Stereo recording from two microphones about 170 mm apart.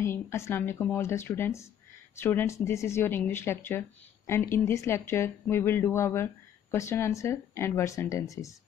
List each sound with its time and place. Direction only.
0.0 s speech: 15° left (ahead or behind)